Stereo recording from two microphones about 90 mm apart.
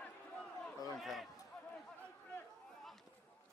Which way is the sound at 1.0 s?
Centre (ahead or behind).